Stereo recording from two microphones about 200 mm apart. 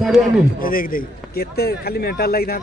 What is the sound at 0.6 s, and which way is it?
A man's voice, 45° left (ahead or behind).